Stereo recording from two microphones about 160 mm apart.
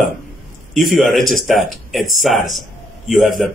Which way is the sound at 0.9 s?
Centre (ahead or behind).